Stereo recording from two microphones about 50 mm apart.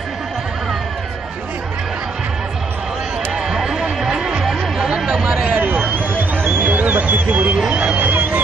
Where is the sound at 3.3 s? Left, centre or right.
Centre.